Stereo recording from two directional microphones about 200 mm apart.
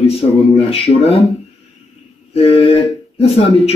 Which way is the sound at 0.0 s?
30° left (ahead or behind).